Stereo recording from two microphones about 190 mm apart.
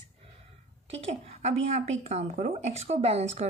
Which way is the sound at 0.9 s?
30° right (ahead or behind).